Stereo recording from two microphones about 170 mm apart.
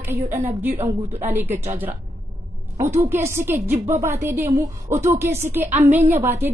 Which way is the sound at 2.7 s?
15° right (ahead or behind).